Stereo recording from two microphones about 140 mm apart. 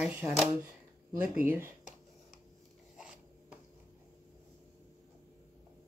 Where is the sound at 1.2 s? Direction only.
15° right (ahead or behind).